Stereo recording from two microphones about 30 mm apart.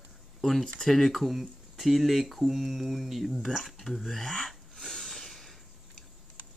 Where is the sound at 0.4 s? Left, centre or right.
Centre.